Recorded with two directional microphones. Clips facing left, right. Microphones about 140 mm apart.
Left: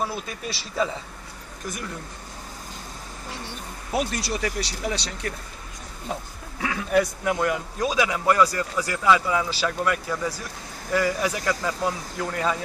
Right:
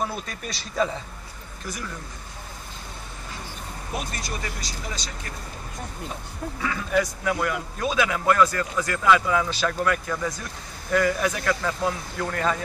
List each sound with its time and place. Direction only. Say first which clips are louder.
0.0 s speech: left 1 dB; 5° left (ahead or behind)
4.2 s speech: left 6 dB; 75° left (ahead or behind)
6.6 s speech: left 3 dB; 65° left (ahead or behind)
7.2 s a man's voice: left 2 dB; 20° left (ahead or behind)